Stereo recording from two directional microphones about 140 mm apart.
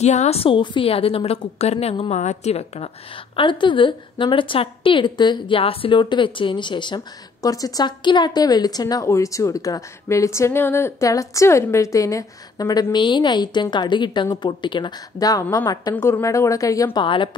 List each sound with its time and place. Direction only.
0.0 s a woman's voice: 55° left (ahead or behind)
3.3 s a woman's voice: 35° left (ahead or behind)
17.0 s a woman's voice: 35° left (ahead or behind)